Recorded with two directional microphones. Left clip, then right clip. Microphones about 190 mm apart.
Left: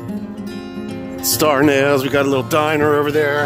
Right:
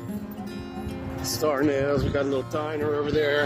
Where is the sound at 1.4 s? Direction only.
70° left (ahead or behind).